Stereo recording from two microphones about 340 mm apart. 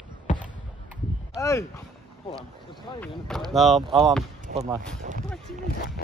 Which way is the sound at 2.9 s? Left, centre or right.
Centre.